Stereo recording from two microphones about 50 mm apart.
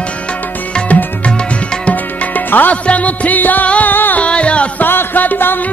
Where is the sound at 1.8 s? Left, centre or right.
Left.